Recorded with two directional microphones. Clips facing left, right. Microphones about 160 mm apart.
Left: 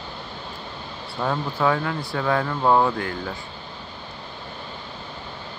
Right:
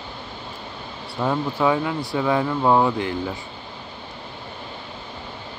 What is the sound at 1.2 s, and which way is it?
Speech, 10° right (ahead or behind).